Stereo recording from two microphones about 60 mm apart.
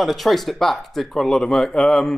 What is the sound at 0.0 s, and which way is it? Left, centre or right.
Speech, centre.